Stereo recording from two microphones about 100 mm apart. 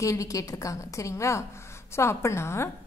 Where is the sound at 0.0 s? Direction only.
35° left (ahead or behind).